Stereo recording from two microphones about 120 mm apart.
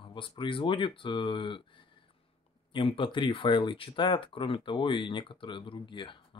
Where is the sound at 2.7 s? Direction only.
45° left (ahead or behind).